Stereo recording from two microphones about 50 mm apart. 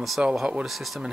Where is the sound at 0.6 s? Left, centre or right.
Centre.